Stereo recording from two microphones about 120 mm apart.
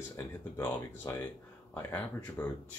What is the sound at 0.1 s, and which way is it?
Speech, 20° left (ahead or behind).